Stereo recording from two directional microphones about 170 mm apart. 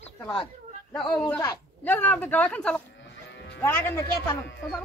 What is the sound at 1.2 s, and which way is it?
Speech, 10° left (ahead or behind).